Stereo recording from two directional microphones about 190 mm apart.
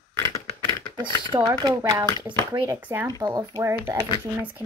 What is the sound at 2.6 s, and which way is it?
Speech, 10° right (ahead or behind).